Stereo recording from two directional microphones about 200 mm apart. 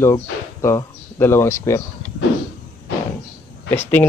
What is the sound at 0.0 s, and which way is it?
Speech, 15° left (ahead or behind).